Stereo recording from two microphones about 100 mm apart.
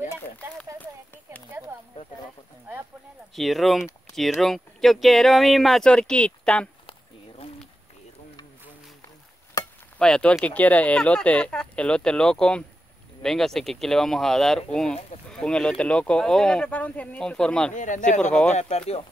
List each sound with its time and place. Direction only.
0.7 s a sound: 15° left (ahead or behind)
3.3 s speech: centre (ahead or behind)
9.9 s speech: 10° left (ahead or behind)
18.7 s speech: 90° left